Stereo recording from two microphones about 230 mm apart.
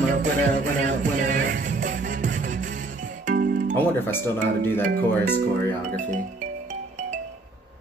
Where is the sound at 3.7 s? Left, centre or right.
Centre.